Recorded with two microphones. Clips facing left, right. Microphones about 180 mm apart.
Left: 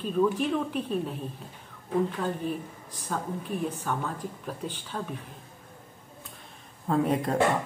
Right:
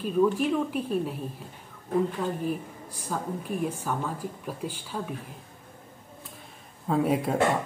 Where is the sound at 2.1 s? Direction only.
5° right (ahead or behind).